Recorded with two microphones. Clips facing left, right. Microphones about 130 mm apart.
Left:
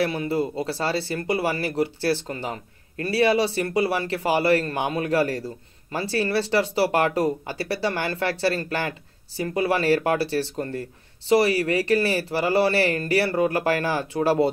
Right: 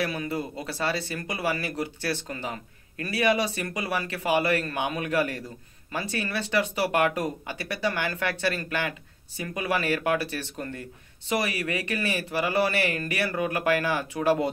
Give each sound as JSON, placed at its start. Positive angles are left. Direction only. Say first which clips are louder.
{"t": 0.0, "sound": "speech", "louder": "left 6 dB", "side_deg": 30}